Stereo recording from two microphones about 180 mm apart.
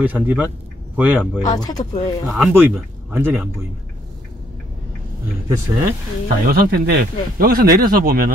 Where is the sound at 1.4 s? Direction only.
20° left (ahead or behind).